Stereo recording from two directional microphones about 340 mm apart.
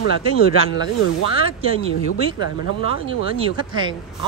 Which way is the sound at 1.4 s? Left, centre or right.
Centre.